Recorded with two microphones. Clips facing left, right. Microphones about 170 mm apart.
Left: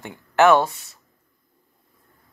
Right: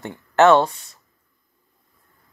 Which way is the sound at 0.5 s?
15° left (ahead or behind).